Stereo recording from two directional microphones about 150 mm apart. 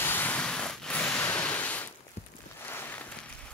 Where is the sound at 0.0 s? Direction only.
15° left (ahead or behind).